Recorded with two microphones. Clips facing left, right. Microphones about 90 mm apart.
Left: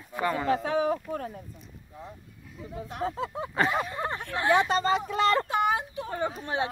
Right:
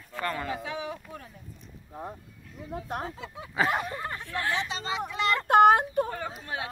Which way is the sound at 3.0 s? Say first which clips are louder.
Left 8 dB; 40° left (ahead or behind).